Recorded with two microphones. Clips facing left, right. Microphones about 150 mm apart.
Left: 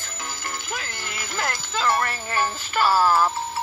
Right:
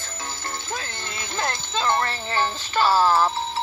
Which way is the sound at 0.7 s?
25° right (ahead or behind).